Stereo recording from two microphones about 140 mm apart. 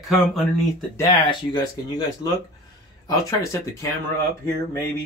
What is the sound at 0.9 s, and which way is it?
Speech, 30° left (ahead or behind).